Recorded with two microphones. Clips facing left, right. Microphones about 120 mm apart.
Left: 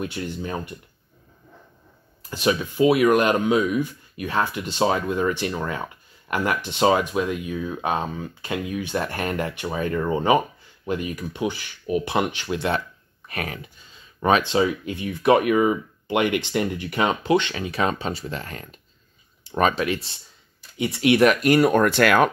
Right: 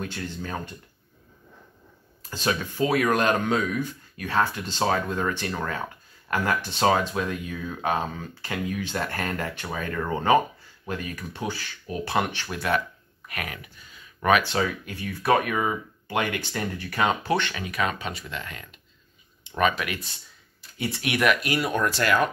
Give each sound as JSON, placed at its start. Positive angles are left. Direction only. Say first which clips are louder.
{"t": 0.0, "sound": "speech", "louder": "left 4 dB", "side_deg": 15}
{"t": 2.2, "sound": "speech", "louder": "left 5 dB", "side_deg": 15}
{"t": 21.2, "sound": "speech", "louder": "left 5 dB", "side_deg": 40}